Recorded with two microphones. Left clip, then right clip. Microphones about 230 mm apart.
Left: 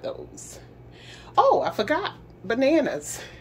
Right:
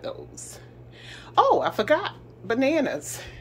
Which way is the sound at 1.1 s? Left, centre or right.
Centre.